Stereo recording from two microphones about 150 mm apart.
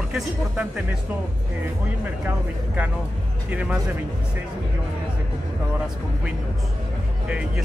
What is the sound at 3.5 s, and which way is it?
Speech, 10° right (ahead or behind).